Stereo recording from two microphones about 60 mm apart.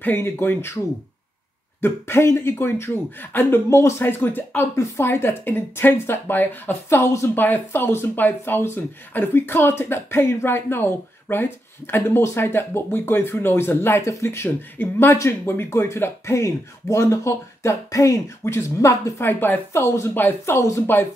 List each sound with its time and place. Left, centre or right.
0.0 s speech: left
1.8 s speech: left
4.6 s speech: left
5.0 s speech: left
7.3 s speech: left
14.8 s speech: left
18.4 s speech: left
19.2 s speech: left
19.7 s speech: left
20.2 s speech: left
20.5 s speech: left
20.8 s speech: left